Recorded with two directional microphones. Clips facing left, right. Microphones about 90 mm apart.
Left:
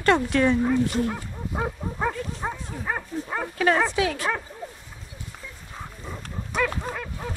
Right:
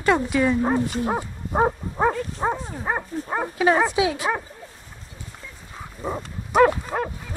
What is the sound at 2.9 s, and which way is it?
Speech, 20° right (ahead or behind).